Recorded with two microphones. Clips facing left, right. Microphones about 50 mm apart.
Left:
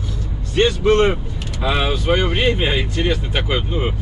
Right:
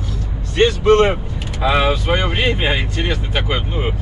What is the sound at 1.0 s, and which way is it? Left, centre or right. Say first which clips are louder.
Vehicle: right 1 dB; right.